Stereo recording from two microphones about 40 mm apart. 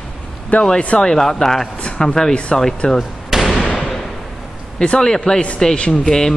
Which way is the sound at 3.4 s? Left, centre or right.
Centre.